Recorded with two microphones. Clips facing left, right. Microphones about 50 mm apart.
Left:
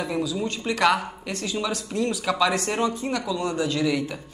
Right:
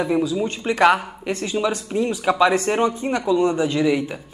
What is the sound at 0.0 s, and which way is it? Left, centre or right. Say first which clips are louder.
Speech: right 6 dB; right.